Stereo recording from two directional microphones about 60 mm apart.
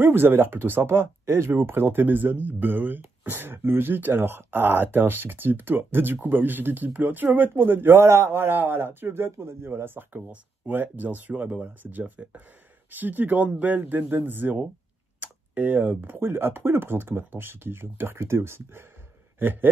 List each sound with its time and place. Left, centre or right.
0.0 s speech: right